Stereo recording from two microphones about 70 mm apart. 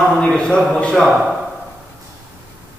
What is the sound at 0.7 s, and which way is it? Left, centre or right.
Speech, centre.